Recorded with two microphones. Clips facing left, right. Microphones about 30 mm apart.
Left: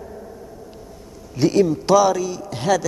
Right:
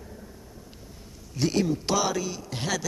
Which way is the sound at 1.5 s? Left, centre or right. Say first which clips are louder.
Left 11 dB; centre.